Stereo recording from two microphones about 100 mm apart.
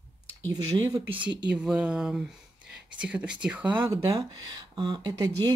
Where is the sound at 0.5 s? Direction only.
45° right (ahead or behind).